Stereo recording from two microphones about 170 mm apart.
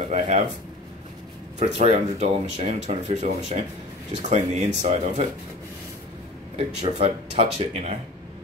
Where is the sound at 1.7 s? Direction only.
40° right (ahead or behind).